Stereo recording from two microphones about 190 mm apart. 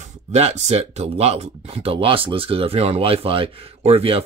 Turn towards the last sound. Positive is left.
turn(degrees=-30)  # may be behind; listen again after turning